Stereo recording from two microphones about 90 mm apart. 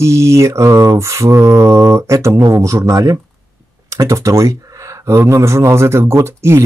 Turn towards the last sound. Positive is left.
turn(degrees=-30)  # may be behind; listen again after turning